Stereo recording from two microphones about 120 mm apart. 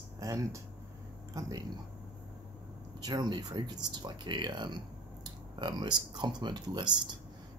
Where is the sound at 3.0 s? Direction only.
35° right (ahead or behind).